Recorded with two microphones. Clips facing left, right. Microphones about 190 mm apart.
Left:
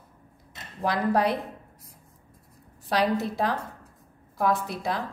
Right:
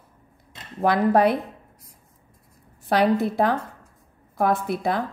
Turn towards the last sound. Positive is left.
turn(degrees=-55)  # may be behind; listen again after turning